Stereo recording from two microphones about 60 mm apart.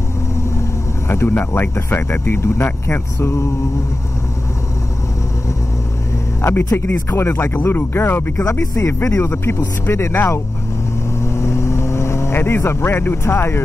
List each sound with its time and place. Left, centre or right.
0.6 s vehicle: left
1.3 s speech: left
6.4 s speech: left
8.7 s speech: left
11.2 s vehicle: left